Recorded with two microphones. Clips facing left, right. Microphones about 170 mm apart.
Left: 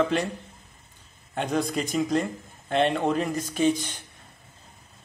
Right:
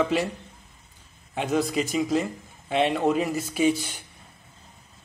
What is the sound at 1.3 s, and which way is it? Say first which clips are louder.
A man's voice: right 2 dB; 5° right (ahead or behind).